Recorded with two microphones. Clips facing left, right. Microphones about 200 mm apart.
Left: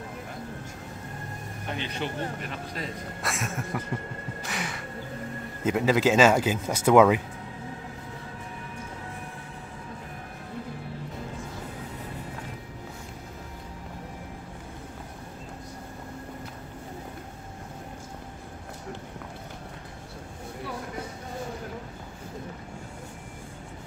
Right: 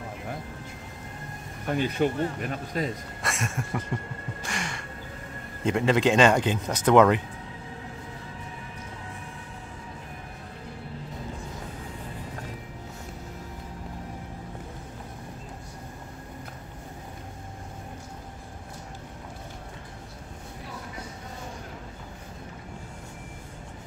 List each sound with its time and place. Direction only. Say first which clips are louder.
1.7 s speech: right 8 dB; 45° right (ahead or behind)
3.2 s speech: left 1 dB; centre (ahead or behind)
4.5 s music: even; 5° left (ahead or behind)
5.6 s speech: even; 5° left (ahead or behind)